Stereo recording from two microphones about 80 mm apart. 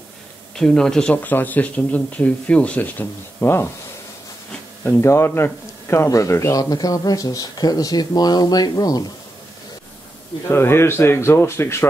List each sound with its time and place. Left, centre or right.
0.6 s speech: centre
1.1 s speech: left
5.0 s speech: left
10.5 s speech: left